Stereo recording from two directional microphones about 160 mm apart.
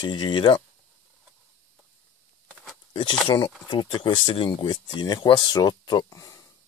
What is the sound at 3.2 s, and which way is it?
Speech, 30° left (ahead or behind).